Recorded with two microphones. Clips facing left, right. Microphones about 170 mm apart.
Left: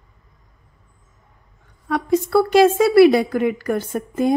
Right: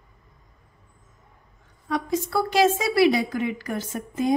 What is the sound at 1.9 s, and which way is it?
A woman's voice, 60° left (ahead or behind).